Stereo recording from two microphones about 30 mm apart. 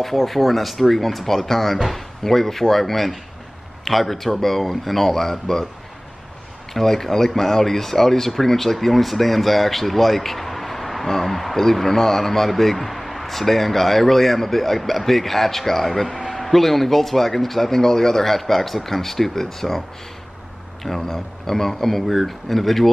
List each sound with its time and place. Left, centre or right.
0.0 s speech: centre
6.7 s speech: centre
21.0 s speech: centre